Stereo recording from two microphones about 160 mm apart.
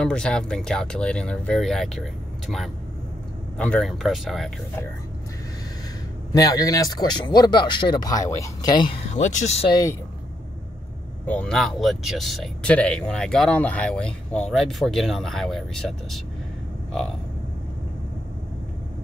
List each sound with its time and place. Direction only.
0.0 s speech: 5° left (ahead or behind)
6.3 s speech: 20° left (ahead or behind)
9.1 s speech: 45° left (ahead or behind)
9.7 s speech: 20° left (ahead or behind)
11.2 s speech: 5° left (ahead or behind)